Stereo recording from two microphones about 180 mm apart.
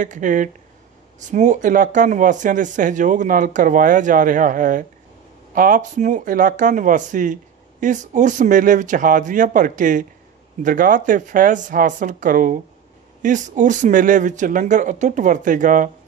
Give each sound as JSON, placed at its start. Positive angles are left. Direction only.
{"t": 0.0, "sound": "speech", "side_deg": -45}